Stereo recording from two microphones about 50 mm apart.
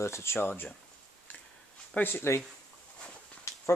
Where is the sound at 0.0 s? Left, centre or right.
Left.